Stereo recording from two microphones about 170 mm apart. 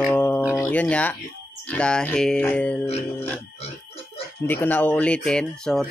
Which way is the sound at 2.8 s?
35° left (ahead or behind).